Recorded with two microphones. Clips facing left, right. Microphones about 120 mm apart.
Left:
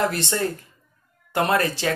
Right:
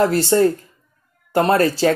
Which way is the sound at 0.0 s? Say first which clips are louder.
Right 9 dB; 30° right (ahead or behind).